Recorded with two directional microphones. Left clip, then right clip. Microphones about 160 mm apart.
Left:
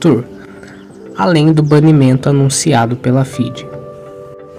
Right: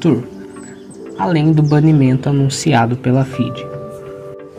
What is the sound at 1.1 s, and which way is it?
Speech, 10° left (ahead or behind).